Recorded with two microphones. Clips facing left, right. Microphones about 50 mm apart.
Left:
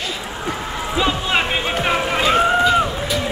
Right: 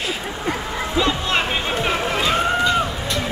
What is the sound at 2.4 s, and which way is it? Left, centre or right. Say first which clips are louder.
Run: left 3 dB; centre.